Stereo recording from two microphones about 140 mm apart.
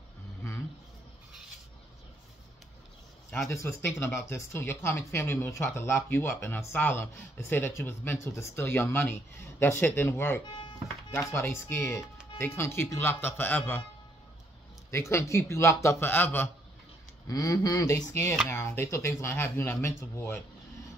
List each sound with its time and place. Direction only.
3.4 s speech: 20° left (ahead or behind)
14.9 s a man's voice: 20° left (ahead or behind)
17.3 s a man's voice: 25° left (ahead or behind)